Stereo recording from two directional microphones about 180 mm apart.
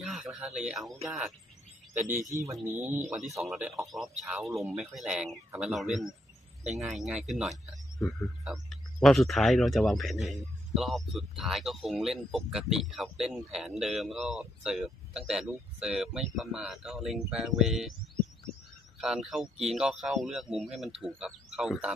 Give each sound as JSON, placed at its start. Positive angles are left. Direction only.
{"t": 0.0, "sound": "a sound", "side_deg": 0}
{"t": 0.6, "sound": "speech", "side_deg": 0}
{"t": 3.0, "sound": "speech", "side_deg": -5}
{"t": 4.5, "sound": "speech", "side_deg": -15}
{"t": 4.7, "sound": "speech", "side_deg": -5}
{"t": 18.9, "sound": "speech", "side_deg": 0}